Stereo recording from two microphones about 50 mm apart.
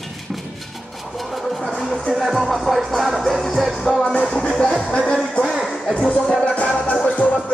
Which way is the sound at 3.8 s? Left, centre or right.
Centre.